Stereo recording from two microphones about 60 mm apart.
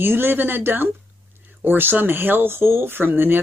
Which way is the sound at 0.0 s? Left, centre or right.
Right.